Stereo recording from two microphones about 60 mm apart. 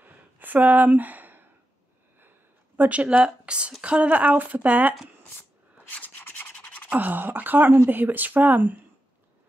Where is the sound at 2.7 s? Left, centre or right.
Right.